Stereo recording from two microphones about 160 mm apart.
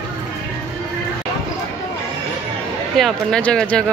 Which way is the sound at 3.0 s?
5° left (ahead or behind).